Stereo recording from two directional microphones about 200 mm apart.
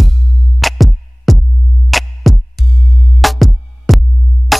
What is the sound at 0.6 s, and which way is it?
Music, centre (ahead or behind).